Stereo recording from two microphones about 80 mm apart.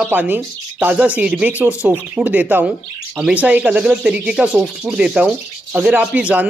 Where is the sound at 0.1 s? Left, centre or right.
Right.